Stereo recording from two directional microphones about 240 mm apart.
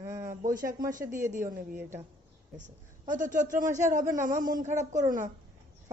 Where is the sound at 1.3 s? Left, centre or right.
Right.